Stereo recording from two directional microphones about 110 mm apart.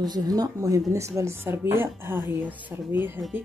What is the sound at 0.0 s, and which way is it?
Speech, 35° right (ahead or behind).